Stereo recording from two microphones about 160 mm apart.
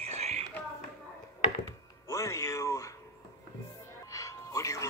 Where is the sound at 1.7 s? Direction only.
20° left (ahead or behind).